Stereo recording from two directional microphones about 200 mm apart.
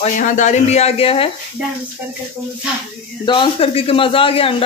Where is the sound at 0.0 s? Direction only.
40° left (ahead or behind).